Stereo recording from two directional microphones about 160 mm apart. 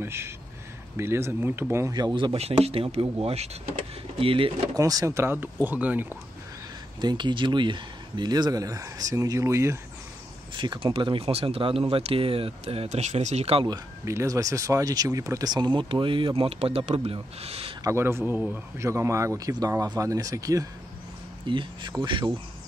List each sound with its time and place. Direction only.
0.0 s speech: 15° right (ahead or behind); by 4.5 s 35° right (ahead or behind)
4.7 s speech: 20° right (ahead or behind)
7.0 s speech: 25° right (ahead or behind)
10.5 s speech: 30° right (ahead or behind)
13.7 s speech: 20° right (ahead or behind); by 17.7 s 35° right (ahead or behind)
17.8 s speech: 15° right (ahead or behind)